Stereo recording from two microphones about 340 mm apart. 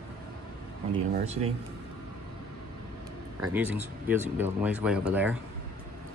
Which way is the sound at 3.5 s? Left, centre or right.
Centre.